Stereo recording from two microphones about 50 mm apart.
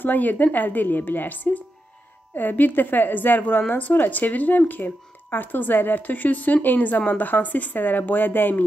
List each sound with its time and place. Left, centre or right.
0.0 s speech: left